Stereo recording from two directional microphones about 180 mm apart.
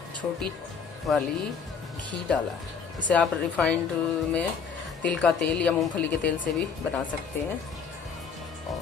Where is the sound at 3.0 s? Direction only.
10° left (ahead or behind).